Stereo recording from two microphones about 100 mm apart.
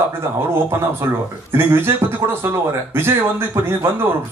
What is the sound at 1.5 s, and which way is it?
Speech, 25° right (ahead or behind).